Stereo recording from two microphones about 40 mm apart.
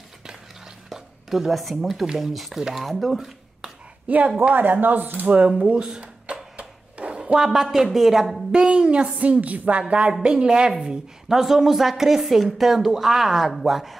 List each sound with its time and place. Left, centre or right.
0.8 s speech: centre
4.1 s a woman's voice: right
5.9 s a sound: right
7.3 s a woman's voice: centre
8.5 s a woman's voice: centre